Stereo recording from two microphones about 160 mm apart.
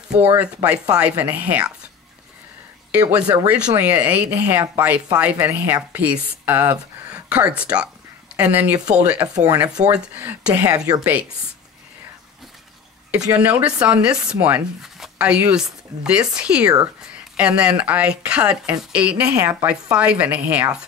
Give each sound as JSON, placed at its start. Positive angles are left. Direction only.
{"t": 0.1, "sound": "speech", "side_deg": -10}
{"t": 2.9, "sound": "speech", "side_deg": -10}
{"t": 9.3, "sound": "speech", "side_deg": -20}
{"t": 9.6, "sound": "speech", "side_deg": -10}
{"t": 13.3, "sound": "speech", "side_deg": -10}